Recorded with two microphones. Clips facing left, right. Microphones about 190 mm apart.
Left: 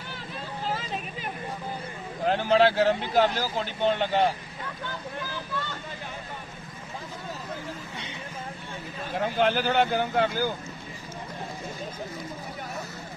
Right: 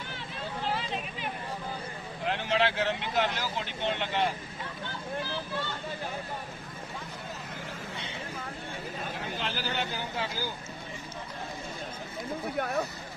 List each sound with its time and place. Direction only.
2.2 s speech: 40° left (ahead or behind)
9.1 s speech: 55° left (ahead or behind)